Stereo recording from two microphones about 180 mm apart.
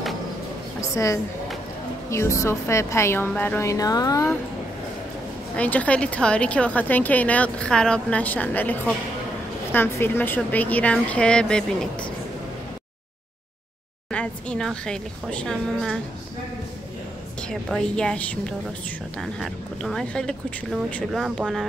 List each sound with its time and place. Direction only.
0.7 s a sound: 15° left (ahead or behind)
2.0 s a woman's voice: 15° left (ahead or behind)
5.6 s a woman's voice: 10° left (ahead or behind)
14.1 s speech: 5° left (ahead or behind)
17.4 s speech: 5° left (ahead or behind)